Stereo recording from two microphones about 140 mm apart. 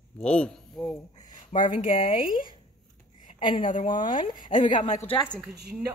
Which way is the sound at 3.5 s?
70° left (ahead or behind).